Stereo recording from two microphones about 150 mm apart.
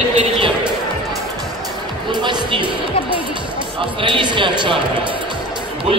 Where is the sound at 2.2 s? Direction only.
30° right (ahead or behind).